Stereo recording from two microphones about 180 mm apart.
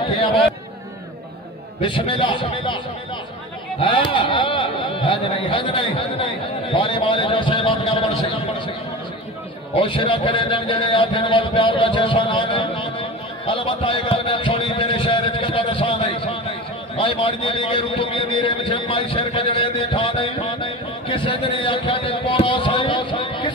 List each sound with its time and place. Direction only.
0.0 s speech: 30° left (ahead or behind)
1.8 s speech: 25° left (ahead or behind)
3.8 s speech: 30° left (ahead or behind)
9.8 s speech: 30° left (ahead or behind)
13.5 s a sound: 25° left (ahead or behind)